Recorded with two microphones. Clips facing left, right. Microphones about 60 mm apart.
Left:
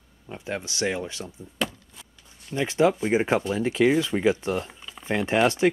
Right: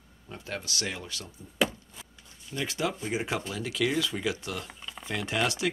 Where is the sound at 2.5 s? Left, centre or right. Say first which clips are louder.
Left 10 dB; left.